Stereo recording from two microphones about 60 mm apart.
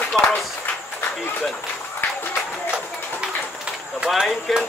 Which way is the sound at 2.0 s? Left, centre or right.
Left.